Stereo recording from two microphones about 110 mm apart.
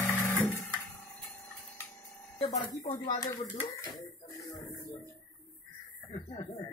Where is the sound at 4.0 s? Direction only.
30° left (ahead or behind).